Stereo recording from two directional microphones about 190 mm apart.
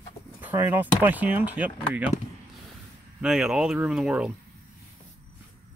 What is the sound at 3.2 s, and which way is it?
Speech, 5° right (ahead or behind).